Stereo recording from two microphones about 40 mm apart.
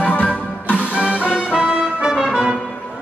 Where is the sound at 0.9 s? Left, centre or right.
Right.